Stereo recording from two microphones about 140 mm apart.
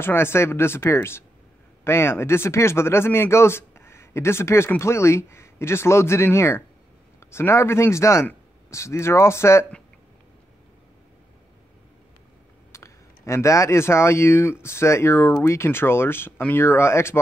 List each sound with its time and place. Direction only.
0.0 s speech: 15° left (ahead or behind)
12.7 s speech: 20° left (ahead or behind)